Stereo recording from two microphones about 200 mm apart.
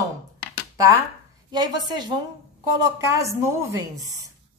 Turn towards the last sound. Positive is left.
turn(degrees=-15)  # may be behind; listen again after turning